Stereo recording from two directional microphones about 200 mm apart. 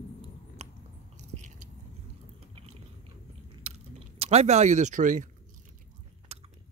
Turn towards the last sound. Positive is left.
turn(degrees=-30)  # may be behind; listen again after turning